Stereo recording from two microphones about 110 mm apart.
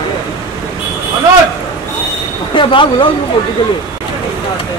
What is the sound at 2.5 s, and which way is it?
Speech, 50° left (ahead or behind).